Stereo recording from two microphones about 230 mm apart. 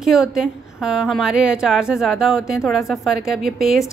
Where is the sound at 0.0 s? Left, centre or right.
Centre.